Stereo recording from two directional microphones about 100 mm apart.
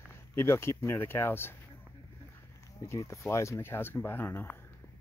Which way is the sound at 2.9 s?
30° left (ahead or behind).